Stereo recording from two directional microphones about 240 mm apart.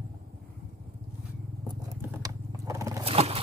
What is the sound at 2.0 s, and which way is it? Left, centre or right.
Biting, centre.